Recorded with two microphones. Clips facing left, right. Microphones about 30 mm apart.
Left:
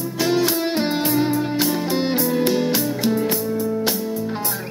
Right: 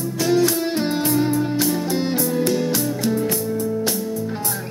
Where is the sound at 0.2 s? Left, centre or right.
Left.